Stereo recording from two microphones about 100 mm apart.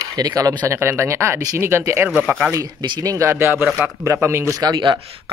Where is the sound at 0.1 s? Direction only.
40° right (ahead or behind).